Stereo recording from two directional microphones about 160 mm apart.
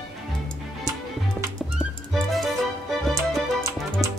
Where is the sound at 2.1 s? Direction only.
Centre (ahead or behind).